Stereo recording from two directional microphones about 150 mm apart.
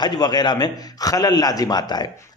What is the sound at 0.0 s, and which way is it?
A man's voice, 25° left (ahead or behind).